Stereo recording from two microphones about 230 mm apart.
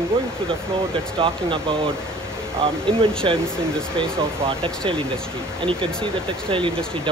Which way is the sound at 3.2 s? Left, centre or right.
Right.